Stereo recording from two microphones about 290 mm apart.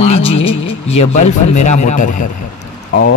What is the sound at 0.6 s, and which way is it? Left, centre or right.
Speech, left.